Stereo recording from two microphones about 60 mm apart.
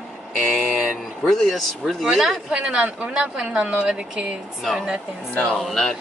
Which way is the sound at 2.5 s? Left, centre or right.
Centre.